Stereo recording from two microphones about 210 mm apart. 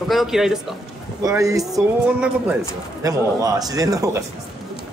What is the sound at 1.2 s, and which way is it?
Speech, 15° right (ahead or behind).